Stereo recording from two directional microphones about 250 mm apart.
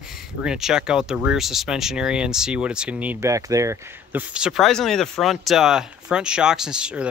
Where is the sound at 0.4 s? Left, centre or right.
Centre.